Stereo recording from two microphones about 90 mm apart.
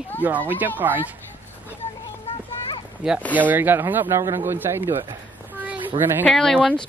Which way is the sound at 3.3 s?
20° right (ahead or behind).